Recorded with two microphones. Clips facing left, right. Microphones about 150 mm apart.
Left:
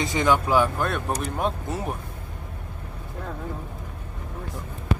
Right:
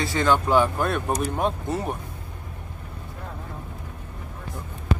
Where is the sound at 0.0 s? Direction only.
15° left (ahead or behind).